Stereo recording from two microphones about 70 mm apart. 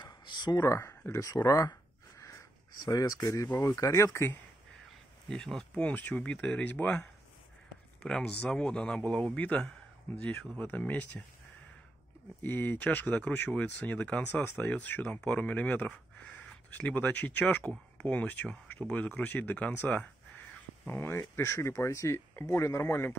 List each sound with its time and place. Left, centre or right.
0.0 s a sound: left
0.7 s speech: left
1.2 s a sound: left
2.8 s speech: left
5.3 s speech: centre
8.0 s speech: centre
10.6 s speech: left
12.4 s speech: left
20.8 s speech: left